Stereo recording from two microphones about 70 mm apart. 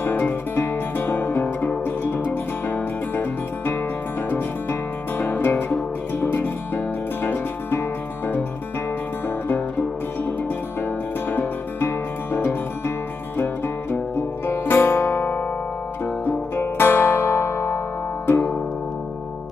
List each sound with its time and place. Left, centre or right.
0.0 s music: left
11.2 s music: left
14.4 s music: left
16.5 s music: left